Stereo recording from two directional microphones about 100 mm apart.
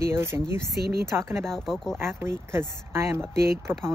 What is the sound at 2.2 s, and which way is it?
Speech, 25° right (ahead or behind).